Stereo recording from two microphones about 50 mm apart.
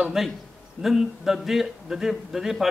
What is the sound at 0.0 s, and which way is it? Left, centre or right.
A man's voice, centre.